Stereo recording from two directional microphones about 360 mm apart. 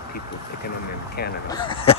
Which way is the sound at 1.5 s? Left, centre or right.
Centre.